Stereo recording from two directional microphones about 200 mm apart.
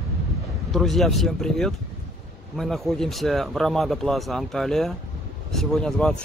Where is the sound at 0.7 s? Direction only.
Centre (ahead or behind).